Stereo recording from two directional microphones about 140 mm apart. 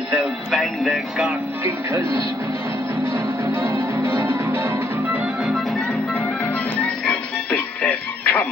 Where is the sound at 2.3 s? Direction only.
20° right (ahead or behind).